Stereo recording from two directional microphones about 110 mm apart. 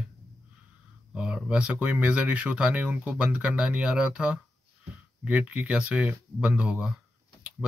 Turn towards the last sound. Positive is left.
turn(degrees=-10)  # may be behind; listen again after turning